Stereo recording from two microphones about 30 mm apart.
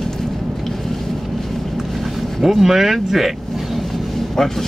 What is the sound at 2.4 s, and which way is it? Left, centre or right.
Speech, centre.